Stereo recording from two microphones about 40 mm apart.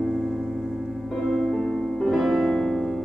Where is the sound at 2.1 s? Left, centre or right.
Centre.